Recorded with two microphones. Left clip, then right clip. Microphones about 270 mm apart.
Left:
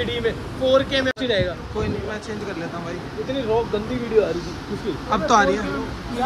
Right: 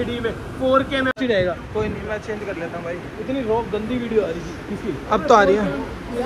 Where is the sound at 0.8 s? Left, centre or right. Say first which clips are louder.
Right 1 dB; centre.